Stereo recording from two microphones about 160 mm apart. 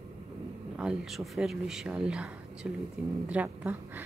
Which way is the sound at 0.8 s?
5° right (ahead or behind).